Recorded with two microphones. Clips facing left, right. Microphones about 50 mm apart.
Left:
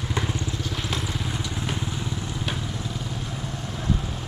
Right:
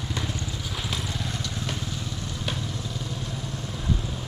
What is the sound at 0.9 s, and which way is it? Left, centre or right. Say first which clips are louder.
Vehicle: left 1 dB; centre.